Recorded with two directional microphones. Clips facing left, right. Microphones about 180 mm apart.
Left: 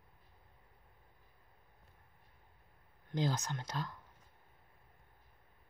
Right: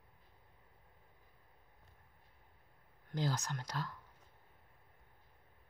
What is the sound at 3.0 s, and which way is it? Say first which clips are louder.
Speech: left 2 dB; 20° left (ahead or behind).